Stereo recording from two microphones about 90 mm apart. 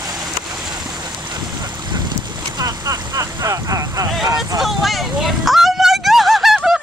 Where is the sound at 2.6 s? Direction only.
40° right (ahead or behind).